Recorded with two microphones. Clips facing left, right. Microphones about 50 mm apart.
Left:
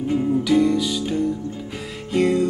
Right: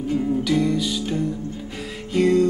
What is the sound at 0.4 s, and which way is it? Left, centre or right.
Music, centre.